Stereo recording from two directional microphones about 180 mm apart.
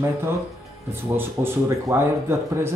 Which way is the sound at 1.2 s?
10° right (ahead or behind).